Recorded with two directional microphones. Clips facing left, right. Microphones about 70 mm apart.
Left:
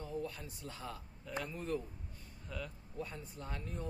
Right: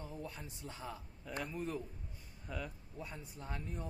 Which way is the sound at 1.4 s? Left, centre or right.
Centre.